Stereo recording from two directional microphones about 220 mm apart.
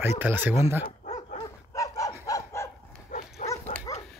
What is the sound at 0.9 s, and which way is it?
Dog, 30° left (ahead or behind).